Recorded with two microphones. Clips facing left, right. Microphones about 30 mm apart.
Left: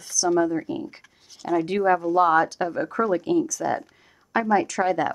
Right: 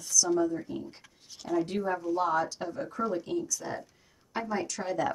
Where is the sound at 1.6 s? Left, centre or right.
Left.